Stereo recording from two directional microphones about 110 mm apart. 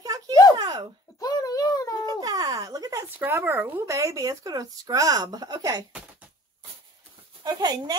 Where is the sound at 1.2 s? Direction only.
35° left (ahead or behind).